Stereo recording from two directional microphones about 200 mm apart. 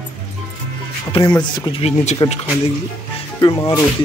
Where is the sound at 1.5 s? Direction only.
20° left (ahead or behind).